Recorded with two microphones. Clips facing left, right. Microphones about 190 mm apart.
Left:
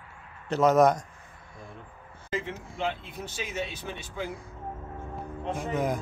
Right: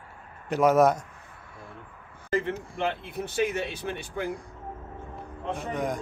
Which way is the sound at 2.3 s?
55° right (ahead or behind).